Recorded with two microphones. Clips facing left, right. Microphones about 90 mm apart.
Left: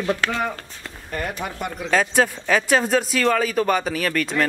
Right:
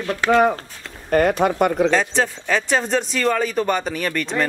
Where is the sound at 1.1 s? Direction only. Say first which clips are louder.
Right 12 dB; 65° right (ahead or behind).